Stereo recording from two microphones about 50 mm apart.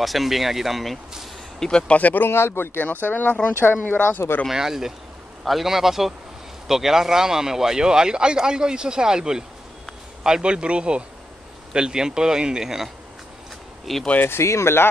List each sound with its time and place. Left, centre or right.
0.0 s speech: centre
1.6 s speech: centre
2.0 s speech: left
2.2 s speech: left
4.5 s speech: centre
14.4 s speech: left